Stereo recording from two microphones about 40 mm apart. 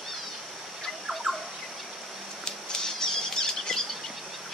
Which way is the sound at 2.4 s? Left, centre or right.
Centre.